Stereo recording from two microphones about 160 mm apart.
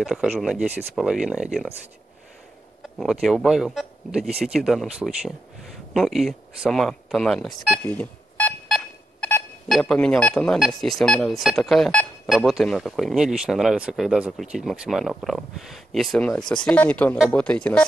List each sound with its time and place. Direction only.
0.0 s speech: 5° right (ahead or behind)
3.0 s speech: centre (ahead or behind)
7.8 s telephone dialing: 10° left (ahead or behind)
9.7 s speech: 5° left (ahead or behind)